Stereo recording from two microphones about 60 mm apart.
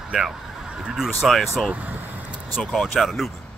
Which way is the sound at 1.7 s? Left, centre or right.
Right.